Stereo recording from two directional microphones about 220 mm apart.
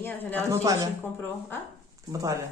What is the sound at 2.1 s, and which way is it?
Speech, 15° right (ahead or behind).